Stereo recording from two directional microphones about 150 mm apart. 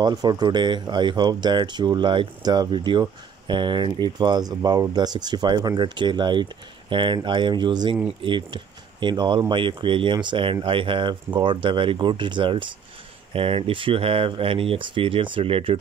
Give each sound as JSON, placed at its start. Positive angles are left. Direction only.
{"t": 0.0, "sound": "speech", "side_deg": -30}